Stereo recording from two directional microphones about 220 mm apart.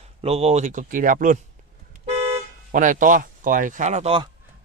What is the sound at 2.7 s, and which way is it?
Speech, 35° right (ahead or behind).